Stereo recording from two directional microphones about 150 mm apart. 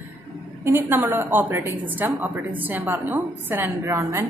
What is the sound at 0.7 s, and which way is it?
A woman's voice, 15° right (ahead or behind).